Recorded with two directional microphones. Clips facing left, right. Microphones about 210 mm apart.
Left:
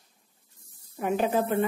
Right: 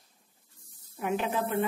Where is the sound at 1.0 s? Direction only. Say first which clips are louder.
Left 4 dB; 40° left (ahead or behind).